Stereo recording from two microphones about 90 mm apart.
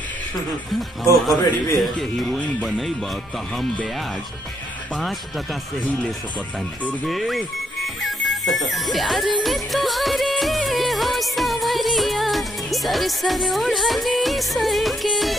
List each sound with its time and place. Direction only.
1.2 s speech: centre (ahead or behind)
4.9 s speech: centre (ahead or behind)
9.4 s music of bollywood: centre (ahead or behind)